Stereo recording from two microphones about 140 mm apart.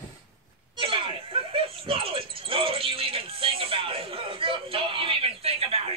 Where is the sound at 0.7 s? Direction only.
35° right (ahead or behind).